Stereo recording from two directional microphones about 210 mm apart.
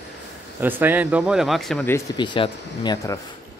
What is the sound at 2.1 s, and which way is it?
Speech, 20° left (ahead or behind).